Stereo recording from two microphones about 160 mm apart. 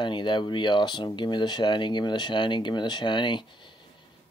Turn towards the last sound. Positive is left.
turn(degrees=30)  # may be behind; listen again after turning